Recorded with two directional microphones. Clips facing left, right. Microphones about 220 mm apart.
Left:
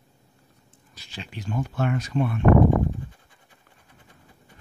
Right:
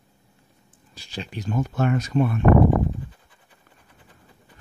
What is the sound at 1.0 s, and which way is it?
Speech, 35° right (ahead or behind).